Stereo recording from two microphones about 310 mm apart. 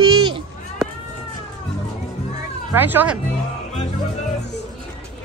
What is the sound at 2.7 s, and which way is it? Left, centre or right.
Speech, centre.